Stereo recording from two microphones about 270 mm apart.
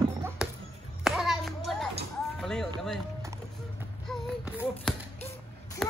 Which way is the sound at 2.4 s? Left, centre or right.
Centre.